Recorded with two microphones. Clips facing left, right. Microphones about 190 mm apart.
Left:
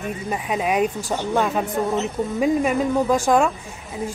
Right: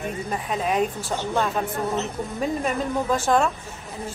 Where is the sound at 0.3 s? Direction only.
5° left (ahead or behind).